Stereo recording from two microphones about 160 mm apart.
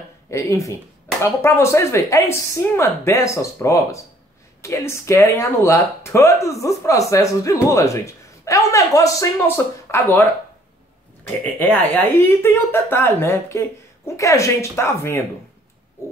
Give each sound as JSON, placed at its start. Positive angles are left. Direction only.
{"t": 0.3, "sound": "speech", "side_deg": 20}
{"t": 11.6, "sound": "speech", "side_deg": 10}